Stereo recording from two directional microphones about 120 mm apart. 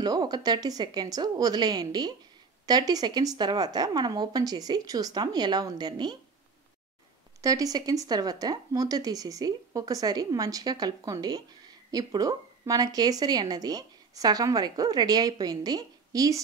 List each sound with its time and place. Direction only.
0.0 s speech: 35° right (ahead or behind)
7.4 s speech: 30° right (ahead or behind)